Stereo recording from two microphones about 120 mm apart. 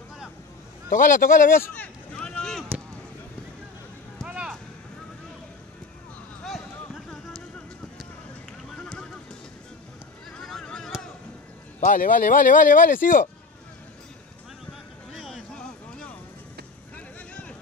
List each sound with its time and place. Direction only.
0.8 s speech: 90° left
1.5 s speech: 20° left (ahead or behind)
2.1 s boat: 10° left (ahead or behind)
4.3 s a sound: 10° right (ahead or behind)
8.7 s horse: 5° left (ahead or behind)
10.4 s honk: 5° left (ahead or behind)
11.8 s speech: 90° left
15.1 s a sound: centre (ahead or behind)